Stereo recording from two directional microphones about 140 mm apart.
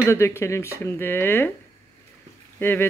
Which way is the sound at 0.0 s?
20° left (ahead or behind).